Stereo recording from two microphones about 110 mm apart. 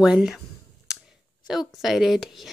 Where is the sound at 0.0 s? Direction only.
5° right (ahead or behind).